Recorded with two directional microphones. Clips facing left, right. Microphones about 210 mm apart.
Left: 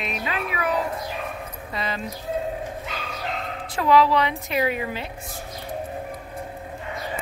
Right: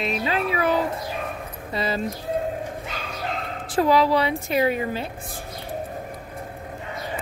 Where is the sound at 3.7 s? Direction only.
35° right (ahead or behind).